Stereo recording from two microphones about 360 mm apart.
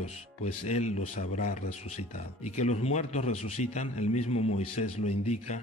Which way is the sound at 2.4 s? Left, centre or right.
Centre.